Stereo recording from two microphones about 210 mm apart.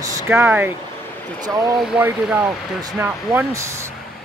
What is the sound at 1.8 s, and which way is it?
Speech, 5° right (ahead or behind).